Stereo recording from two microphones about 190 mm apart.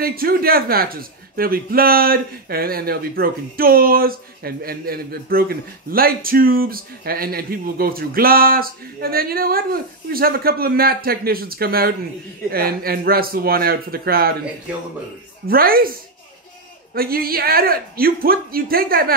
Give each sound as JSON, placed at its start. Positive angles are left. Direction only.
{"t": 0.0, "sound": "a man's voice", "side_deg": -50}
{"t": 15.4, "sound": "a man's voice", "side_deg": -50}
{"t": 16.9, "sound": "a man's voice", "side_deg": -50}